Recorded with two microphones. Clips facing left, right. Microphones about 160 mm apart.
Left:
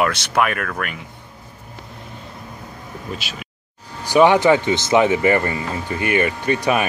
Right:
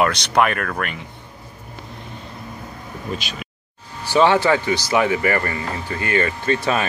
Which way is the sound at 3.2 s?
5° left (ahead or behind).